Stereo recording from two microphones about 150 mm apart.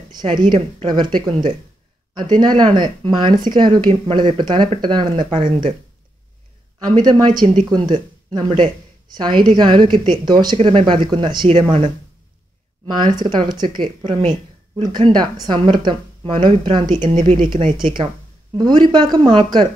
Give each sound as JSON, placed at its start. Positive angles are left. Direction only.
{"t": 0.1, "sound": "speech", "side_deg": -30}
{"t": 7.0, "sound": "speech", "side_deg": -25}
{"t": 12.8, "sound": "speech", "side_deg": -30}